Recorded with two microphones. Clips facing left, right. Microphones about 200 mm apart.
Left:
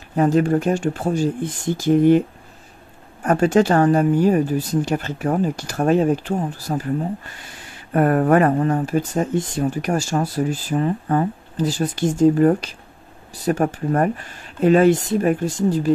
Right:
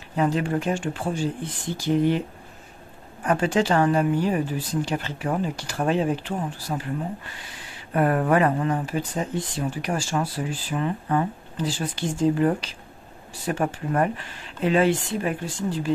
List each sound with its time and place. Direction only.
0.1 s speech: 45° left (ahead or behind)
3.3 s speech: 45° left (ahead or behind)
7.9 s speech: 50° left (ahead or behind)